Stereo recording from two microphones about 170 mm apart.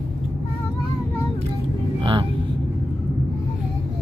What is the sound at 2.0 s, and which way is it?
Speech, 30° right (ahead or behind).